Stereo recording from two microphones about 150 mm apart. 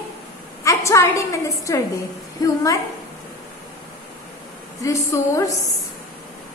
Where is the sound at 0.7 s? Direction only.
20° left (ahead or behind).